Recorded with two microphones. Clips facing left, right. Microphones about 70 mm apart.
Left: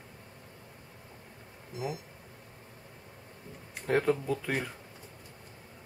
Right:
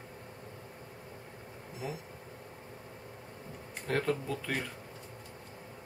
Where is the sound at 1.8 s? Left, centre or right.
Centre.